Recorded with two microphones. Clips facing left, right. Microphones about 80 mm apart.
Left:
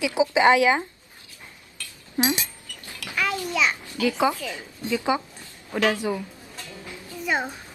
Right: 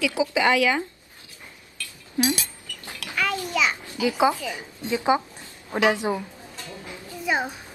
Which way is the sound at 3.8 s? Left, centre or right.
Centre.